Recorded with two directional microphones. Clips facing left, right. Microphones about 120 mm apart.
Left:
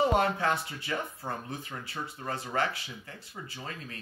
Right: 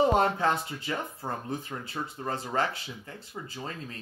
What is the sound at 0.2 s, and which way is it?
Speech, 25° right (ahead or behind).